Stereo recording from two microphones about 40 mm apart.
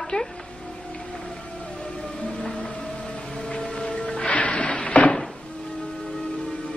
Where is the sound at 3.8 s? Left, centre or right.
Left.